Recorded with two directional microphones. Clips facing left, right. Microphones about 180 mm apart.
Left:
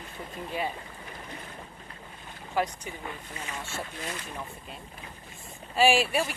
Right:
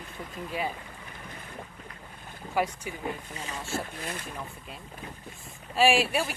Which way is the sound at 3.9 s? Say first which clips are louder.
Even; 55° right (ahead or behind).